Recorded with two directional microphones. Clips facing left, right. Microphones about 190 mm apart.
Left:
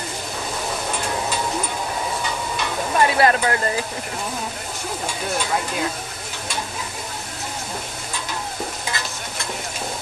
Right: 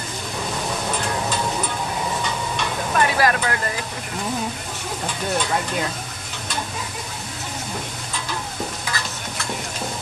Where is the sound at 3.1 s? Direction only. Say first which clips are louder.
Left 3 dB; 25° left (ahead or behind).